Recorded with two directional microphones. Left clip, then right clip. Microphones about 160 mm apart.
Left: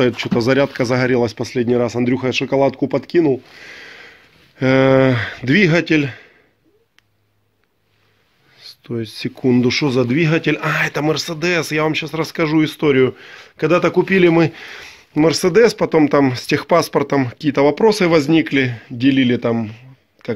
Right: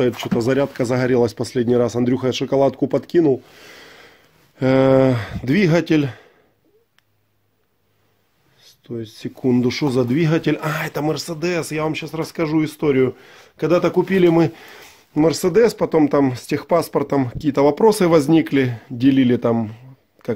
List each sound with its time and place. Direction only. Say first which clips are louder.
0.0 s speech: left 3 dB; 5° right (ahead or behind)
5.7 s speech: left 2 dB; 30° right (ahead or behind)
8.8 s speech: left 5 dB; 15° left (ahead or behind)
9.3 s speech: left 3 dB; 10° right (ahead or behind); by 20.3 s 35° right (ahead or behind)